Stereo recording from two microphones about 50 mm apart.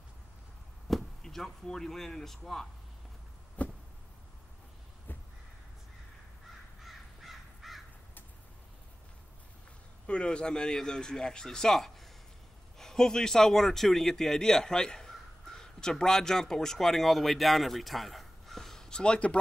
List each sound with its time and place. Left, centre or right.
0.8 s speech: centre
3.6 s a sound: left
6.8 s crow: centre
10.0 s a man's voice: left